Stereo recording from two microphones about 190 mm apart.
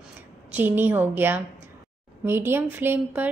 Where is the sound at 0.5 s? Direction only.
10° right (ahead or behind).